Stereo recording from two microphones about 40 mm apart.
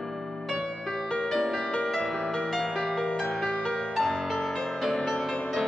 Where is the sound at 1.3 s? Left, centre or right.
Centre.